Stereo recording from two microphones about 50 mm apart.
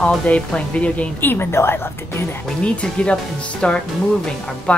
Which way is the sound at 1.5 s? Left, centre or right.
Left.